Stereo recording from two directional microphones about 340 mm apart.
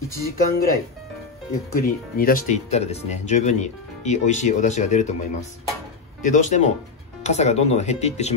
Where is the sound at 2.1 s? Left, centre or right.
Left.